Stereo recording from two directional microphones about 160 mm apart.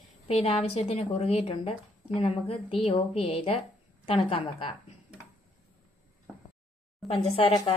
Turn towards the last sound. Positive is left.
turn(degrees=30)  # may be behind; listen again after turning